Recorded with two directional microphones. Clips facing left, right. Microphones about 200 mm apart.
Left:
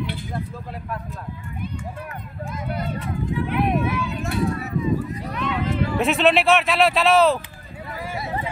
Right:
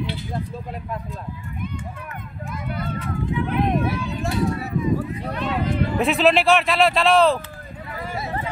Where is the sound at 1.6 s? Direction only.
35° left (ahead or behind).